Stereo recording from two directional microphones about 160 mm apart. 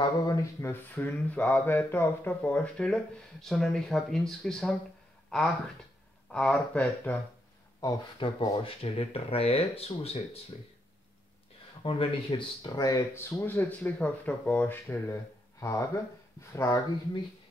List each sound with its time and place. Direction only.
0.2 s speech: 20° left (ahead or behind)
7.8 s speech: 30° left (ahead or behind)
11.8 s speech: 30° left (ahead or behind); by 17.2 s 15° left (ahead or behind)